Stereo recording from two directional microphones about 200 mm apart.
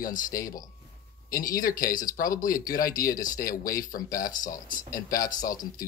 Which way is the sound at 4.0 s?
15° left (ahead or behind).